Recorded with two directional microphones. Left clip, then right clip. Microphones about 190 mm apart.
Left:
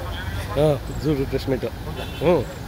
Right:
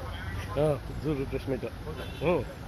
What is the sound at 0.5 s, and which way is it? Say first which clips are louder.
Speech: left 8 dB; 10° left (ahead or behind).